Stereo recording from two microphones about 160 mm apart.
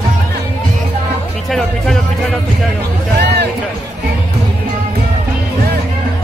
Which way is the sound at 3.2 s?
90° right.